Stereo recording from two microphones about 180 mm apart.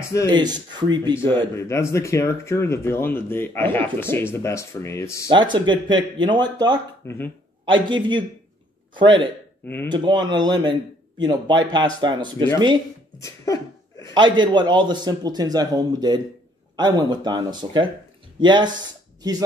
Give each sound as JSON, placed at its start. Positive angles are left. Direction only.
{"t": 0.3, "sound": "a man's voice", "side_deg": -25}
{"t": 1.6, "sound": "speech", "side_deg": 15}
{"t": 5.3, "sound": "a man's voice", "side_deg": -25}
{"t": 7.0, "sound": "speech", "side_deg": 15}
{"t": 7.6, "sound": "a man's voice", "side_deg": -25}
{"t": 13.2, "sound": "a sound", "side_deg": 20}
{"t": 14.1, "sound": "a man's voice", "side_deg": -25}